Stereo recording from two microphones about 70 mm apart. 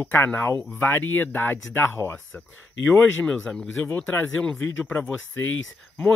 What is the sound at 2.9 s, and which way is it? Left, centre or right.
Speech, centre.